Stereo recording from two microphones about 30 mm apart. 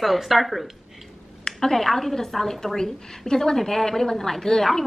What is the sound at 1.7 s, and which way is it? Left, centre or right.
A woman's voice, centre.